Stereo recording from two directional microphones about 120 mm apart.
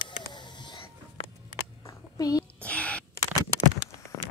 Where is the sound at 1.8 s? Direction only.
30° left (ahead or behind).